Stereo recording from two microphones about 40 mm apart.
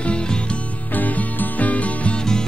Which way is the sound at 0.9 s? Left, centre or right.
Left.